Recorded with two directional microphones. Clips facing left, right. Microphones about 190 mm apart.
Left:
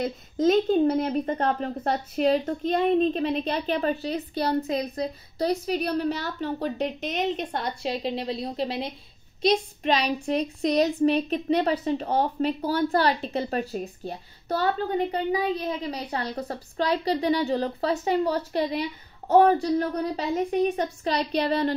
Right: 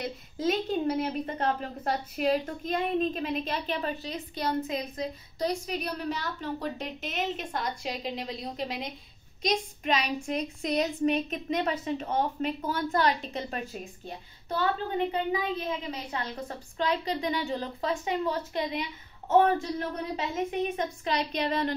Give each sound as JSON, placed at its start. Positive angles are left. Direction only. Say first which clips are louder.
{"t": 0.7, "sound": "a woman's voice", "louder": "left 6 dB", "side_deg": 40}